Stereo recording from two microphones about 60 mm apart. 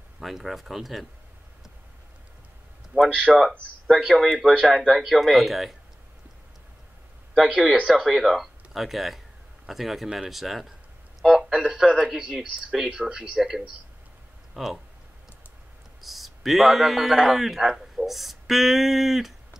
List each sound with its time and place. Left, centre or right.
0.2 s speech: centre
2.9 s speech: centre
3.9 s speech: centre
7.3 s speech: centre
11.1 s a sound: centre
11.8 s speech: centre
12.1 s speech: centre
16.0 s a man's voice: centre